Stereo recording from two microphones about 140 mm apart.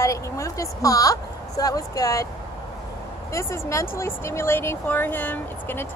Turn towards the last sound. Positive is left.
turn(degrees=15)  # may be behind; listen again after turning